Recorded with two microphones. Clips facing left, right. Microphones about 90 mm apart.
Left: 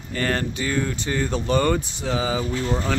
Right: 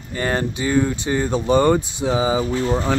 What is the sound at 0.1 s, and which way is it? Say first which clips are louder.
Speech: right 2 dB; 20° right (ahead or behind).